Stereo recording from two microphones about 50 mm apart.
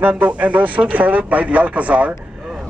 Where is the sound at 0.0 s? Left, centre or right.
Right.